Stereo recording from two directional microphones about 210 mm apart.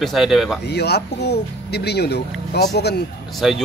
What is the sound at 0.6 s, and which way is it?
Speech, 50° left (ahead or behind).